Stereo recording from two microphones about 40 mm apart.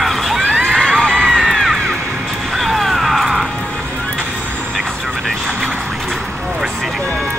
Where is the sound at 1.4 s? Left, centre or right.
Centre.